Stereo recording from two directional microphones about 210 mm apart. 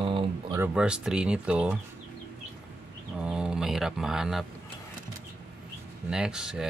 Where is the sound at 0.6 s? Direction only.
5° right (ahead or behind).